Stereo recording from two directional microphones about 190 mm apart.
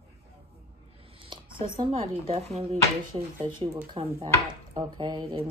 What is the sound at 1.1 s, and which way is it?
Speech, 25° right (ahead or behind).